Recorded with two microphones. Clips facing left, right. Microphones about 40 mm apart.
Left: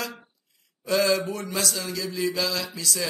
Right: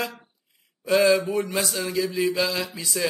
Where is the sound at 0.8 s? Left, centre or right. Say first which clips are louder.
Right 4 dB; right.